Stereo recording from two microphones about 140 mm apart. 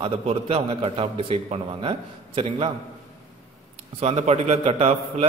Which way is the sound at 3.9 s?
50° right (ahead or behind).